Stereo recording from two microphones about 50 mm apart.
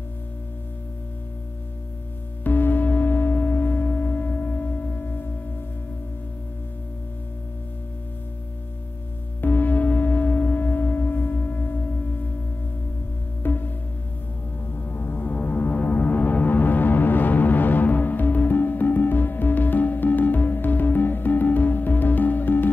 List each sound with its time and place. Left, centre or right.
2.4 s music: left
9.4 s singing bowl: left
13.4 s music: left
14.7 s music: left